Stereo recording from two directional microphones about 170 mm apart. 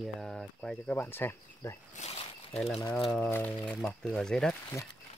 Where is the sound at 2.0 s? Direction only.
35° left (ahead or behind).